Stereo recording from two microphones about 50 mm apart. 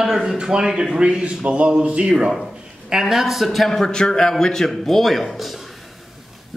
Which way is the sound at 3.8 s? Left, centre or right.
Centre.